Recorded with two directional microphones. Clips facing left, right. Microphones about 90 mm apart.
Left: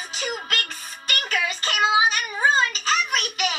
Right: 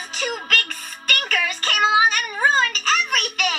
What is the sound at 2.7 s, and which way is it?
Music, 25° left (ahead or behind).